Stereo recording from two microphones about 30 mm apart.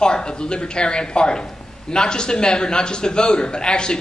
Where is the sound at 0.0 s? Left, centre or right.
Left.